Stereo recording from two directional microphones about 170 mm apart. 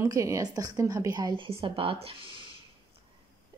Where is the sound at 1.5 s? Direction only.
30° right (ahead or behind).